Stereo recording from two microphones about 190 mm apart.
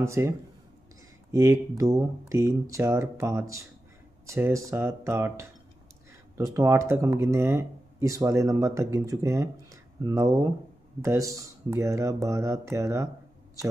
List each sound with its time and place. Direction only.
0.0 s speech: 15° right (ahead or behind)
1.3 s speech: 15° right (ahead or behind)